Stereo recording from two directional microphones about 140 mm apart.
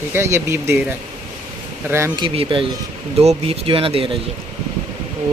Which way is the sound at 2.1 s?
35° right (ahead or behind).